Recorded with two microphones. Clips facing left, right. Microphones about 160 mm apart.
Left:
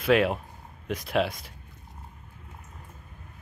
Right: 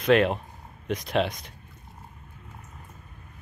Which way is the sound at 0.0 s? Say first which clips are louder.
Right 2 dB; 5° left (ahead or behind).